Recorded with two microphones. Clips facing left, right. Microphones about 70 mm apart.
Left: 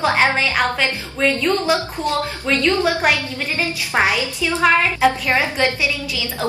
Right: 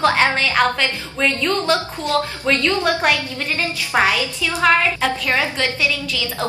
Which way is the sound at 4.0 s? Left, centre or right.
Left.